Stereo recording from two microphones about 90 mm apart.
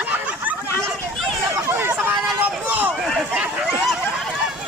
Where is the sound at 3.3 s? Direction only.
15° right (ahead or behind).